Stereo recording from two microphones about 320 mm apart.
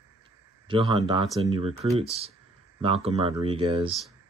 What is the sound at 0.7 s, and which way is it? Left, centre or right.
Speech, centre.